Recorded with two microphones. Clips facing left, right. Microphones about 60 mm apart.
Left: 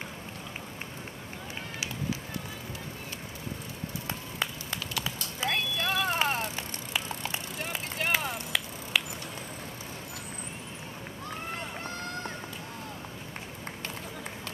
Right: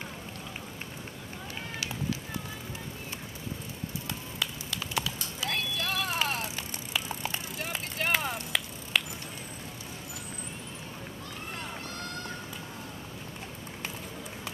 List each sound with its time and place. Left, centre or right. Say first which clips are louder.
4.1 s run: left 3 dB; left
5.0 s clip-clop: left 2 dB; left
6.1 s vehicle: left 2 dB; left
7.2 s vehicle: even; centre